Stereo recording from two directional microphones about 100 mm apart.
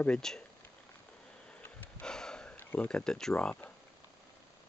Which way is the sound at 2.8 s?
5° left (ahead or behind).